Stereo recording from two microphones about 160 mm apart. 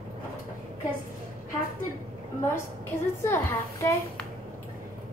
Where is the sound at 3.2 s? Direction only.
15° left (ahead or behind).